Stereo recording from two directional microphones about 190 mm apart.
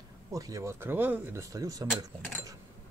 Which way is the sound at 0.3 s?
20° right (ahead or behind).